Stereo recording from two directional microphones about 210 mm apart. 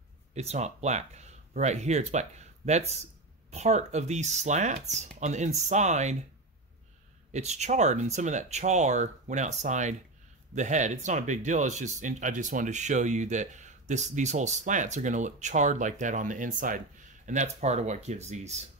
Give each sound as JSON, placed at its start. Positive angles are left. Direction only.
{"t": 0.3, "sound": "speech", "side_deg": -30}
{"t": 7.3, "sound": "speech", "side_deg": -30}